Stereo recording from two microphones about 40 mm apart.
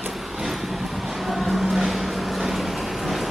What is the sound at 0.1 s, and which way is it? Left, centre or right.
Vehicle, centre.